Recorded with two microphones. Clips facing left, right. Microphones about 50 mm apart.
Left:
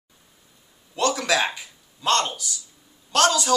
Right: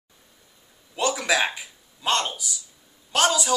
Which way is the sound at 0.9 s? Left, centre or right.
Centre.